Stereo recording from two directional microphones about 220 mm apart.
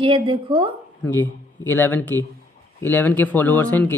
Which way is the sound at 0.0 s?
25° right (ahead or behind).